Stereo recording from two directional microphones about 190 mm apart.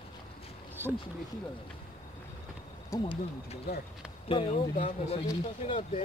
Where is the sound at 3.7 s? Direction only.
55° left (ahead or behind).